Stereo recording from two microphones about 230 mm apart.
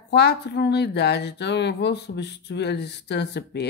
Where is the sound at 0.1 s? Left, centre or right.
Left.